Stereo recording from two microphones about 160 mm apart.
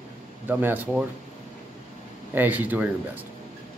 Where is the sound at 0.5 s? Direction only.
10° right (ahead or behind).